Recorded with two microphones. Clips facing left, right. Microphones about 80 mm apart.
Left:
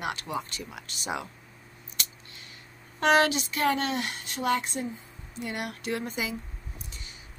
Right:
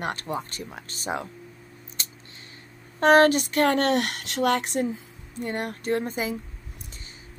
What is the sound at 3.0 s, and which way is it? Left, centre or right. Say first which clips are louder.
Speech: right 6 dB; right.